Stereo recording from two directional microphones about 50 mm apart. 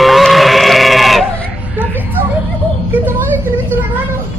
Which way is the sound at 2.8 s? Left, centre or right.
Right.